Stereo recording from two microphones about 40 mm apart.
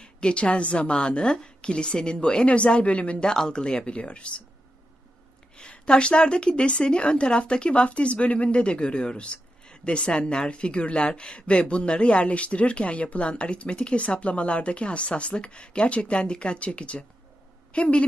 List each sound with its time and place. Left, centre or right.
0.0 s a woman's voice: left
3.2 s a woman's voice: centre
5.6 s a woman's voice: left